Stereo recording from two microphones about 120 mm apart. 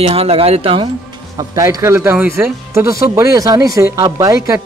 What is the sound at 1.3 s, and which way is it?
Speech, 30° right (ahead or behind).